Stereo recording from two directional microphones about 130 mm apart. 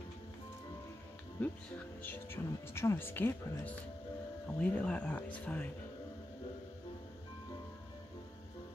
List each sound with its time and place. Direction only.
1.4 s speech: 10° left (ahead or behind)